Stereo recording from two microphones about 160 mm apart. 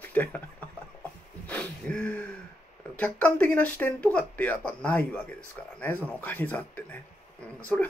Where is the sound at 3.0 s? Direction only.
10° left (ahead or behind).